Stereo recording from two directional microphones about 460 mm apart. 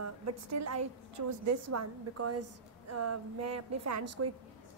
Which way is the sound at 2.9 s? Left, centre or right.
Right.